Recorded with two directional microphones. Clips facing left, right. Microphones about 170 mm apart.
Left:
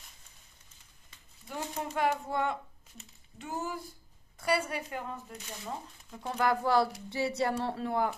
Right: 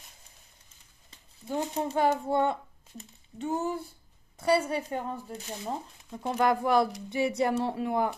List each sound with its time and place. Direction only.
1.5 s speech: 30° right (ahead or behind)
6.0 s speech: 15° right (ahead or behind)